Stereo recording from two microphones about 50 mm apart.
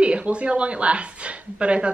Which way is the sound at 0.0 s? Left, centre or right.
Right.